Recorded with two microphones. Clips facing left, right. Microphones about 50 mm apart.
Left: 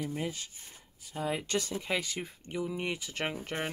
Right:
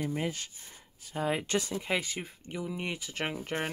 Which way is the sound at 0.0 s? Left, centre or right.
Right.